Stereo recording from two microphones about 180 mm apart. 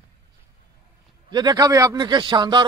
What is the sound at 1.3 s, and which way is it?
A man's voice, 25° right (ahead or behind).